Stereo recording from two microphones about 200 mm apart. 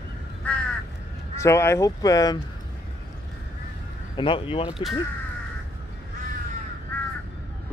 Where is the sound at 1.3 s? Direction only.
15° left (ahead or behind).